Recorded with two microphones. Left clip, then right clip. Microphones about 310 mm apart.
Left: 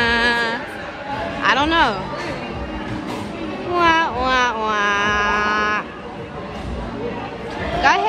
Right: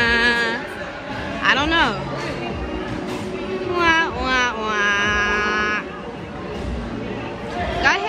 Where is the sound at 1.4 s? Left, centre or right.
Centre.